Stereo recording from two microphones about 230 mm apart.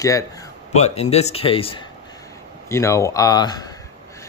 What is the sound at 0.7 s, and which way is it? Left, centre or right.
Speech, left.